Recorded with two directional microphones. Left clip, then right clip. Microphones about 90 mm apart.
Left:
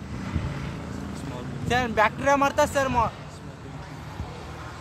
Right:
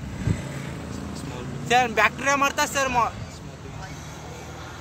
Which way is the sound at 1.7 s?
30° left (ahead or behind).